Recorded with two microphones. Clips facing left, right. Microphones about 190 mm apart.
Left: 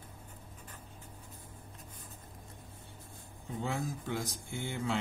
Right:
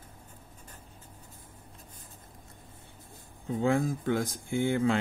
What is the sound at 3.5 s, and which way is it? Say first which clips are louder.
Speech: right 10 dB; 55° right (ahead or behind).